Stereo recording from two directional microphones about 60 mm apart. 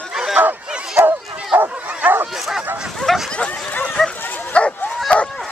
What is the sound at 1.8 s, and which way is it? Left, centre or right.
Bow-wow, right.